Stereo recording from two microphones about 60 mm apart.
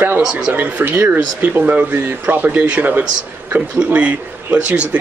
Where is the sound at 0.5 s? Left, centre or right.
Right.